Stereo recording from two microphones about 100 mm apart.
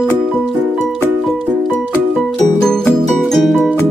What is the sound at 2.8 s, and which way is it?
Music, centre (ahead or behind).